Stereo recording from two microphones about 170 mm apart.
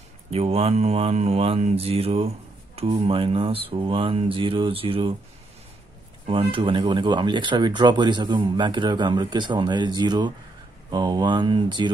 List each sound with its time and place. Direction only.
0.3 s mantra: 35° right (ahead or behind)
6.2 s speech: 30° right (ahead or behind)